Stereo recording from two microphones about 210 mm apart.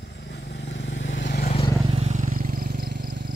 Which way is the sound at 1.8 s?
30° right (ahead or behind).